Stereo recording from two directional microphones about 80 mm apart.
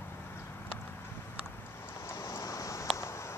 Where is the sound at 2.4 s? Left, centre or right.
Left.